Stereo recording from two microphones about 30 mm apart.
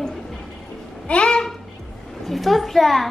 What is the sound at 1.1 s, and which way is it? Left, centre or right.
Speech, left.